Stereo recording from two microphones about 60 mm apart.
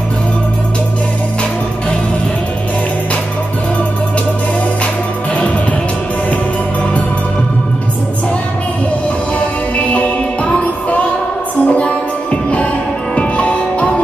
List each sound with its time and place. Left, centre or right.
9.8 s music: left